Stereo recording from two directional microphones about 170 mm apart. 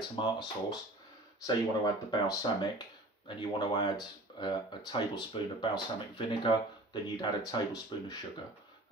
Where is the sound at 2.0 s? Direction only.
25° left (ahead or behind).